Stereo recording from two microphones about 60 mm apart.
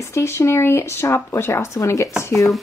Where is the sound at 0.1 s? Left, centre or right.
Left.